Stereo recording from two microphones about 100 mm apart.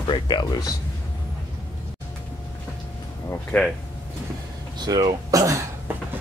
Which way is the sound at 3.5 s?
15° left (ahead or behind).